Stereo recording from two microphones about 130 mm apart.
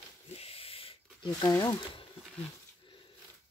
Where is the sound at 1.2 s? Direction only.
30° left (ahead or behind).